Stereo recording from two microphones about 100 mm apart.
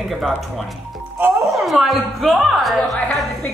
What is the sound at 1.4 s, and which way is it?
A woman's voice, centre (ahead or behind).